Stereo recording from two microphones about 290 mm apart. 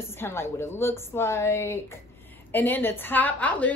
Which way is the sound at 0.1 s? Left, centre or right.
Centre.